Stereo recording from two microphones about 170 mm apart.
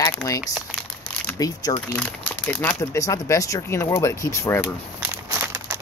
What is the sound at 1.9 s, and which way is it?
Speech, 10° left (ahead or behind).